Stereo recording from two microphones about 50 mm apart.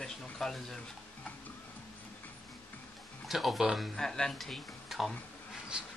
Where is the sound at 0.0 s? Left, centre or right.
Centre.